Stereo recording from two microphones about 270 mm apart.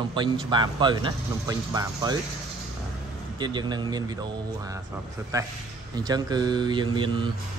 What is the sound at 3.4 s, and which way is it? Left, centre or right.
A man's voice, centre.